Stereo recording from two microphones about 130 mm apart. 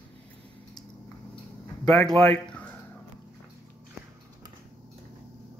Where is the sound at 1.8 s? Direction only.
5° left (ahead or behind).